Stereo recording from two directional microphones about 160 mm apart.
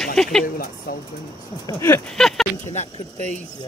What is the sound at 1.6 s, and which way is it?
Speech, 15° left (ahead or behind).